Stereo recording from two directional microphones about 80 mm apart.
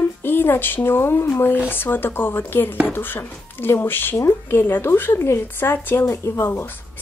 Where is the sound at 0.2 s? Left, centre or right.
Left.